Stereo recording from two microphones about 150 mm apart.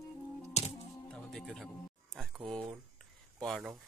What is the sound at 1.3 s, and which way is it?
Speech, centre (ahead or behind).